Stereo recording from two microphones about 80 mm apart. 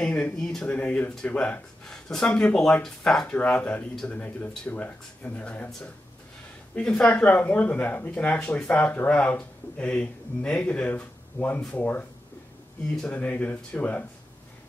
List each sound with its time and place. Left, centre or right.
0.0 s speech: centre
1.9 s speech: centre
6.7 s speech: centre
13.1 s speech: left